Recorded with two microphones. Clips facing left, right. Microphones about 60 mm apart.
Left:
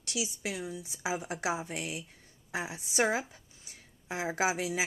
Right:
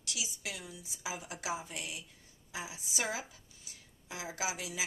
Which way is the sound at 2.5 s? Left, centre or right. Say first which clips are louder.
Left 8 dB; left.